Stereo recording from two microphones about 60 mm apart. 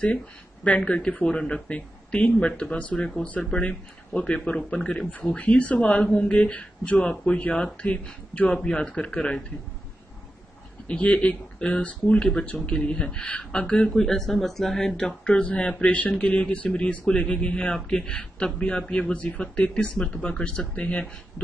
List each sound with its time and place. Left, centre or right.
0.7 s speech: centre
6.0 s a man's voice: centre
10.9 s a man's voice: left